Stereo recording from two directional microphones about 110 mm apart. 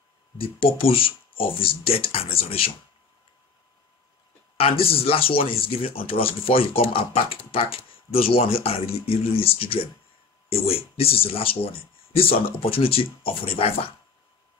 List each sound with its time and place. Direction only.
0.4 s speech: 60° left (ahead or behind)
4.6 s speech: 60° left (ahead or behind)